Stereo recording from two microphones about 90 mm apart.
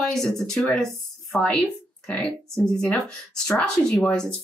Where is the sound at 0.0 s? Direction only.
5° left (ahead or behind).